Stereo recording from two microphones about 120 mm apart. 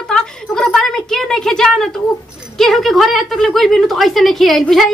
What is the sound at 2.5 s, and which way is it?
Speech, centre (ahead or behind).